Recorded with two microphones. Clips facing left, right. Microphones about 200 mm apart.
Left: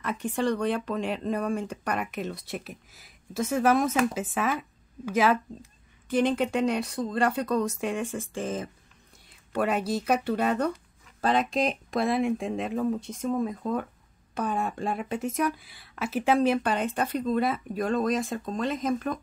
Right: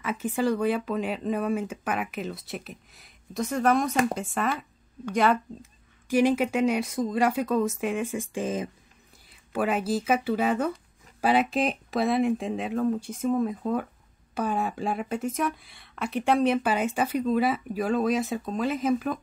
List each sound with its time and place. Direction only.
0.0 s speech: 5° right (ahead or behind)
6.0 s speech: 10° right (ahead or behind)
9.3 s speech: centre (ahead or behind)